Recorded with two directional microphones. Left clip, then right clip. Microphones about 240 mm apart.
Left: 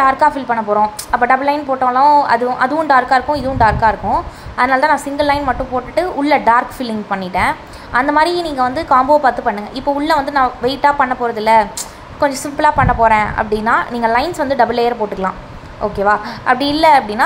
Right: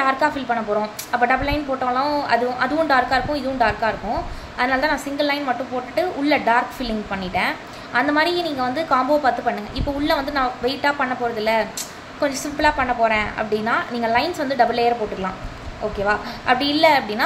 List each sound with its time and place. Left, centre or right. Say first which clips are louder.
0.0 s a woman's voice: left 7 dB; centre